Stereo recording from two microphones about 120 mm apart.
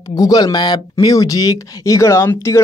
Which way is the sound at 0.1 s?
35° left (ahead or behind).